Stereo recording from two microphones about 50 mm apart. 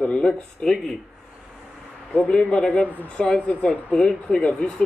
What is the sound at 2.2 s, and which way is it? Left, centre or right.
Speech, centre.